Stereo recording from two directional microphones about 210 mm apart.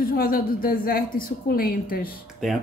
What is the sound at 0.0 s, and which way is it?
A woman's voice, 45° left (ahead or behind).